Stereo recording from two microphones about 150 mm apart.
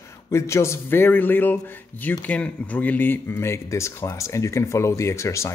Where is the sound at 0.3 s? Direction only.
20° left (ahead or behind).